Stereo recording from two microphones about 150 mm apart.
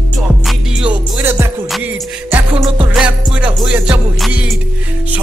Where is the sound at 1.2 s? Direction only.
15° right (ahead or behind).